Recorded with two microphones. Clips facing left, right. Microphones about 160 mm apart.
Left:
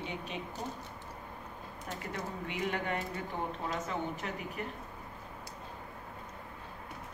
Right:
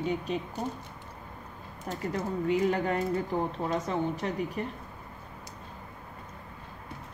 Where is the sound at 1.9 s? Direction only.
40° right (ahead or behind).